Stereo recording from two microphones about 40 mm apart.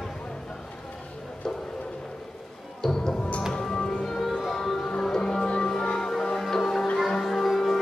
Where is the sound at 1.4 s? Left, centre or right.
Centre.